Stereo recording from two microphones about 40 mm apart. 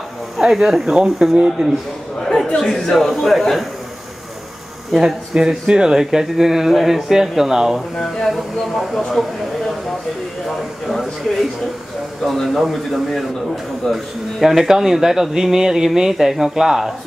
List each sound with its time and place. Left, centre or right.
0.5 s speech: centre
2.2 s speech: centre
4.9 s speech: centre
8.0 s speech: centre